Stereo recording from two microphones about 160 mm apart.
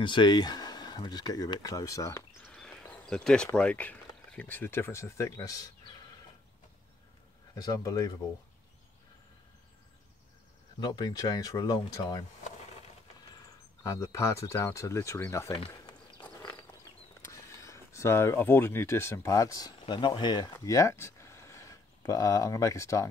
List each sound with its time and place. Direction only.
0.0 s speech: 30° left (ahead or behind)
2.4 s a sound: 5° left (ahead or behind)
3.5 s speech: 10° left (ahead or behind)
7.5 s speech: 25° left (ahead or behind)
10.8 s speech: 25° left (ahead or behind)
13.8 s speech: 20° left (ahead or behind)
15.5 s a sound: 35° left (ahead or behind)
16.2 s a sound: 10° left (ahead or behind)
17.3 s speech: 20° left (ahead or behind)